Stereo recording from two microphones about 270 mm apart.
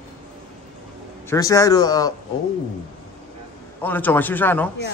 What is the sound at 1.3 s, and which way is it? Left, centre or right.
Speech, centre.